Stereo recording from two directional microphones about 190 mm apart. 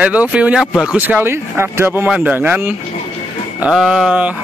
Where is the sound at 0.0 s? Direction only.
5° right (ahead or behind).